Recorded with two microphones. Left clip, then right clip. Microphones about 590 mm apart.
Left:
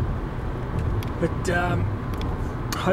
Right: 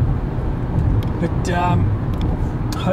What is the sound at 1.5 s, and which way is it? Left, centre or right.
Speech, left.